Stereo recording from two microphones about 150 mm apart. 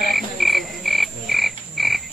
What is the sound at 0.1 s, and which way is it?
Croak, centre (ahead or behind).